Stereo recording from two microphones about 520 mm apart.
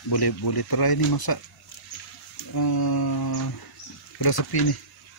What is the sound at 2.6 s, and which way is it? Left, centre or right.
Speech, left.